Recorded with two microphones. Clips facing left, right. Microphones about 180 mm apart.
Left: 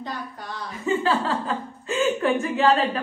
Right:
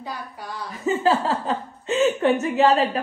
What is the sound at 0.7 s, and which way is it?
Speech, 40° right (ahead or behind).